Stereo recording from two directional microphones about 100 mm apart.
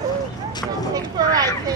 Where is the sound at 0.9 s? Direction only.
40° right (ahead or behind).